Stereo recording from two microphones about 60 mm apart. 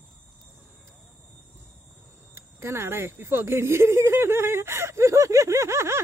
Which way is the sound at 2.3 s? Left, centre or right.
Right.